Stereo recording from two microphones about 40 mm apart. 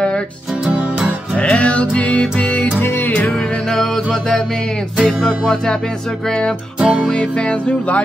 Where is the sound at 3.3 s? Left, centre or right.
Centre.